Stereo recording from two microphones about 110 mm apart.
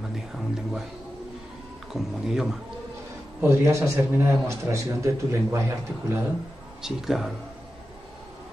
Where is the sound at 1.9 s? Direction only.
5° right (ahead or behind).